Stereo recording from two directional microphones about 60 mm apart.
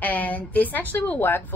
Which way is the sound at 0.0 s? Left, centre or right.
Left.